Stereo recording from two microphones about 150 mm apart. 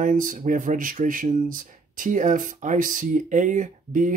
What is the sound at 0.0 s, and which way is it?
Speech, 65° right (ahead or behind).